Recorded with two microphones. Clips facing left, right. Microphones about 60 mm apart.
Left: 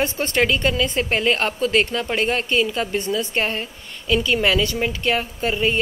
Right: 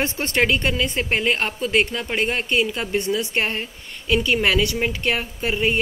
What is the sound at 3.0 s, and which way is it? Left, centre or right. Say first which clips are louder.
Speech: right 2 dB; right.